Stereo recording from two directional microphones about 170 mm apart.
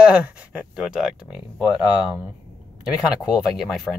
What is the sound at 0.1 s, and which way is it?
Speech, 5° right (ahead or behind).